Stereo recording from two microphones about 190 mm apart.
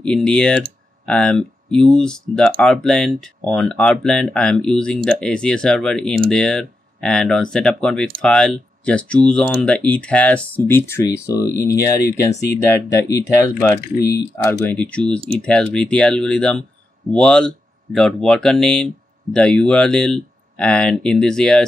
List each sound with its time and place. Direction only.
0.0 s speech: 5° left (ahead or behind)